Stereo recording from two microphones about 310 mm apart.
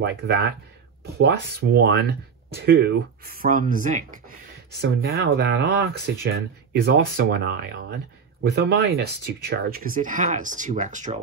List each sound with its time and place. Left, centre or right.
0.0 s speech: right